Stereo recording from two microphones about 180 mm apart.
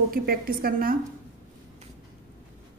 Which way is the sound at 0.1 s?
55° right (ahead or behind).